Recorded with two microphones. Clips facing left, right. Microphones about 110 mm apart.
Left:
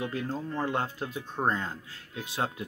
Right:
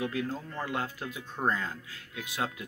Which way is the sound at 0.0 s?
25° left (ahead or behind).